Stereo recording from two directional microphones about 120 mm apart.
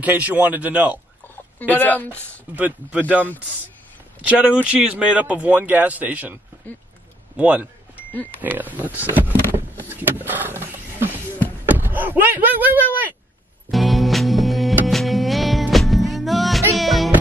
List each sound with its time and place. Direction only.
0.0 s speech: 10° right (ahead or behind)
1.6 s speech: 15° left (ahead or behind)
2.5 s speech: 10° right (ahead or behind)
7.3 s speech: 10° right (ahead or behind)
8.1 s speech: 15° left (ahead or behind)
8.4 s speech: 15° right (ahead or behind)
9.6 s vehicle: 20° right (ahead or behind)
10.2 s roaring cats: 15° right (ahead or behind)
11.6 s a sound: 15° right (ahead or behind)
13.7 s music: centre (ahead or behind)